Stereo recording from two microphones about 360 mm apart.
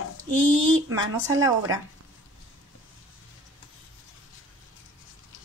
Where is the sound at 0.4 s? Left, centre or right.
Right.